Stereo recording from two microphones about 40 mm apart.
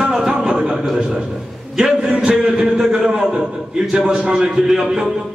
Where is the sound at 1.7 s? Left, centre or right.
Right.